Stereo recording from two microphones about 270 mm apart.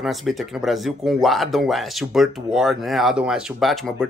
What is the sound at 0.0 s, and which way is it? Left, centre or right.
Speech, centre.